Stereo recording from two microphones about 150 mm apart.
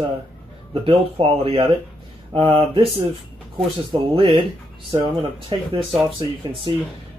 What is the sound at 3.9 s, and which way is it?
Speech, 35° right (ahead or behind).